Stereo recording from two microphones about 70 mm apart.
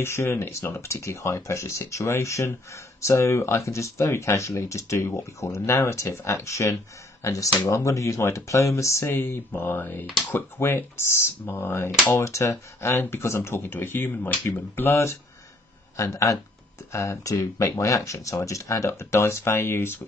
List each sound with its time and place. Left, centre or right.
0.0 s speech: left
9.5 s speech: left
16.0 s speech: left